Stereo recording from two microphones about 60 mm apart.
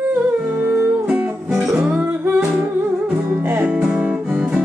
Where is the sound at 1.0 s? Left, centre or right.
Right.